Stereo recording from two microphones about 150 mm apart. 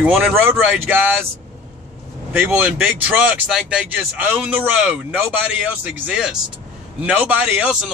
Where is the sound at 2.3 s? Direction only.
10° right (ahead or behind).